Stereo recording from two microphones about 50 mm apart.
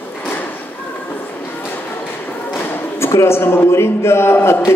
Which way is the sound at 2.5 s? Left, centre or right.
Left.